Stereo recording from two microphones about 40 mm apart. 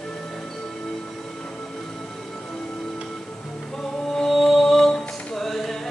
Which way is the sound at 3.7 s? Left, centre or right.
Centre.